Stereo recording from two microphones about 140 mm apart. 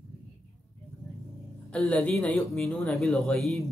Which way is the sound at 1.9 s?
10° left (ahead or behind).